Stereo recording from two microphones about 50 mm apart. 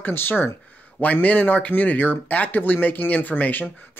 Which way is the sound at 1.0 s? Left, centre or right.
Left.